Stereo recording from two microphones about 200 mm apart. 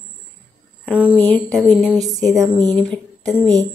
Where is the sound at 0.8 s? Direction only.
5° right (ahead or behind).